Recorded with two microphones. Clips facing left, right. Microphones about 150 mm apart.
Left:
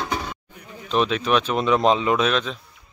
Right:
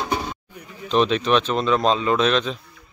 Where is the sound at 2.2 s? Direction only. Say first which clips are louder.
Right 2 dB; 5° left (ahead or behind).